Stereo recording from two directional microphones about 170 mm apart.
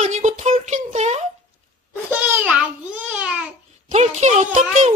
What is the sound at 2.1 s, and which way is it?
Babbling, 5° right (ahead or behind).